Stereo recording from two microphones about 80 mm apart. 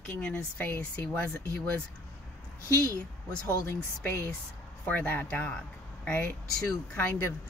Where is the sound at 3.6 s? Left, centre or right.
Left.